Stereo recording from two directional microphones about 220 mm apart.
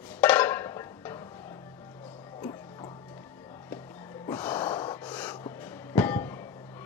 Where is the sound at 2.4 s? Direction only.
20° left (ahead or behind).